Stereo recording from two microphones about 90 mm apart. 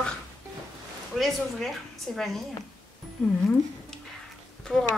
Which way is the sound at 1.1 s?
Centre (ahead or behind).